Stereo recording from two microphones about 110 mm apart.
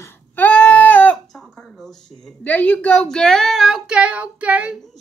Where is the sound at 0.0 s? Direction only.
15° left (ahead or behind).